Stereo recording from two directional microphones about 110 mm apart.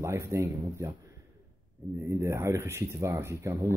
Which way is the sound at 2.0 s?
25° right (ahead or behind).